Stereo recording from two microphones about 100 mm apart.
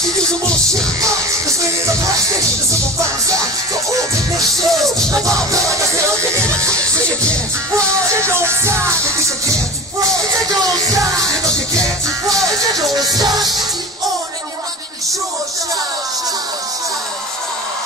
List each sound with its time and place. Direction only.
2.7 s music: 35° right (ahead or behind)
4.6 s music: centre (ahead or behind)
5.2 s music: 35° right (ahead or behind)